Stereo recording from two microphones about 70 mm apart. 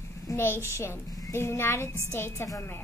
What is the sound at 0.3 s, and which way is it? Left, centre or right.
A child's voice, left.